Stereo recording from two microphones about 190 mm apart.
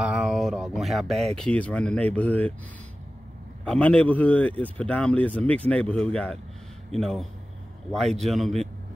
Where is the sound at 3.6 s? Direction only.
5° left (ahead or behind).